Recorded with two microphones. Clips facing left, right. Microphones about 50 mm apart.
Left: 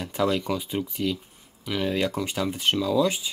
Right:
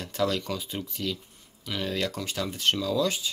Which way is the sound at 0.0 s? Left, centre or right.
Centre.